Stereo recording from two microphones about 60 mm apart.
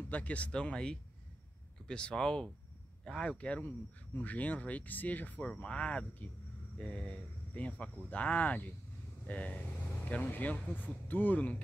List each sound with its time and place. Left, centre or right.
0.1 s speech: left
3.6 s speech: left